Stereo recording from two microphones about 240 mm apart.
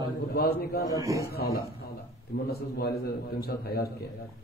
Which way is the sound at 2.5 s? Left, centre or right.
Left.